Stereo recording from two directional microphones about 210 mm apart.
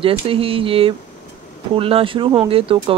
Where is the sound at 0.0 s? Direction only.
25° right (ahead or behind).